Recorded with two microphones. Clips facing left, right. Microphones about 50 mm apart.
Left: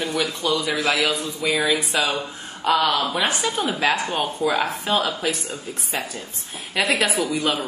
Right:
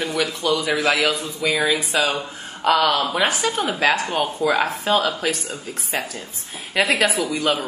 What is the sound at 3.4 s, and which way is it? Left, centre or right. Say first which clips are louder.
Speech: right 2 dB; right.